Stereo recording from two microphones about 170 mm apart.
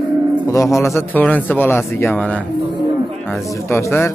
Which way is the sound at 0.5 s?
15° left (ahead or behind).